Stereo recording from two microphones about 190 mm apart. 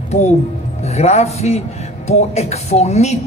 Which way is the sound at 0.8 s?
35° left (ahead or behind).